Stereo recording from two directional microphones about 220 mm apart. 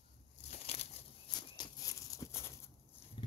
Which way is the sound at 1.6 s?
15° left (ahead or behind).